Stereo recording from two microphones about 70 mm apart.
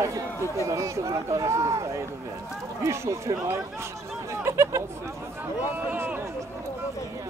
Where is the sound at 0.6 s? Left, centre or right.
Right.